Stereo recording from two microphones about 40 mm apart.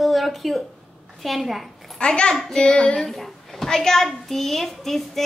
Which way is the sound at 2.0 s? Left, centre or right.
Left.